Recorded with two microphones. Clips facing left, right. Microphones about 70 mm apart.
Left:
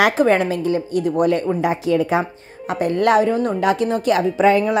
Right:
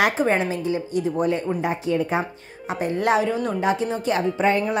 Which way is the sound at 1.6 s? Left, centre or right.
Left.